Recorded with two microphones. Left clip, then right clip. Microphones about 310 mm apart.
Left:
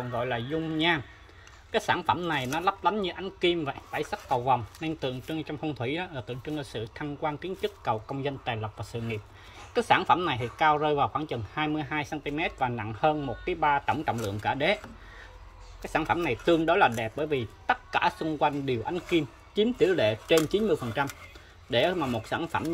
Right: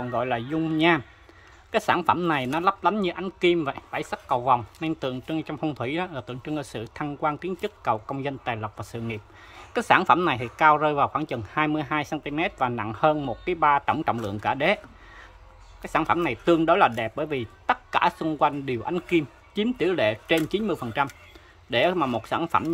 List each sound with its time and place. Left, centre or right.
0.2 s speech: centre
15.8 s speech: centre